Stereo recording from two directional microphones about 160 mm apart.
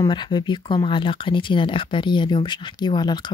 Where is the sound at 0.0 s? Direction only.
30° left (ahead or behind).